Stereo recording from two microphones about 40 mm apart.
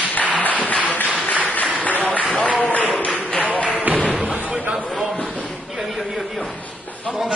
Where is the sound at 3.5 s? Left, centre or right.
Left.